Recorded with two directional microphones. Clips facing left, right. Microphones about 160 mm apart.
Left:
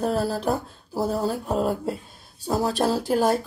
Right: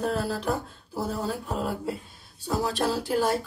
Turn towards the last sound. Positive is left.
turn(degrees=40)  # may be behind; listen again after turning